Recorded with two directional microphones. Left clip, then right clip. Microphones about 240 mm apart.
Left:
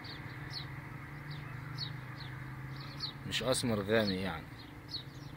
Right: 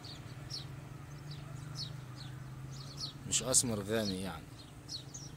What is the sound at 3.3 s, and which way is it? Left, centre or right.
Speech, centre.